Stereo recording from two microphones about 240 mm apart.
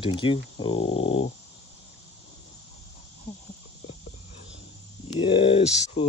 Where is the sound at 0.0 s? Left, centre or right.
Left.